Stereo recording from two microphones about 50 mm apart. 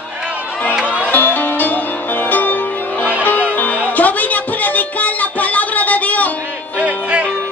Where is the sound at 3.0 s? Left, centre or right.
Right.